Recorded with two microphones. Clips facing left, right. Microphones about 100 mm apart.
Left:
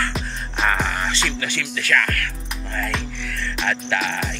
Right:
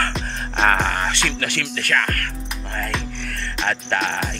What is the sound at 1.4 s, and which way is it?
Speech, 55° right (ahead or behind).